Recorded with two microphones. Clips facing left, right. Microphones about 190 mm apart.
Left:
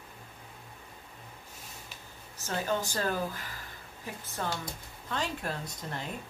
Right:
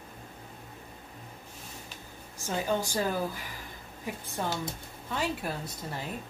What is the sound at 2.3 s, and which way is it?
Speech, 15° right (ahead or behind).